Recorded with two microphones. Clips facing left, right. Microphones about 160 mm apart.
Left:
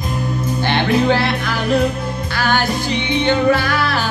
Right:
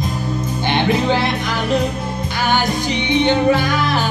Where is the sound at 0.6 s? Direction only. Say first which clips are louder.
Left 1 dB; 15° right (ahead or behind).